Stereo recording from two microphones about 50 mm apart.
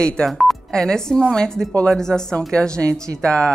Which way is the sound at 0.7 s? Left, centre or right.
Centre.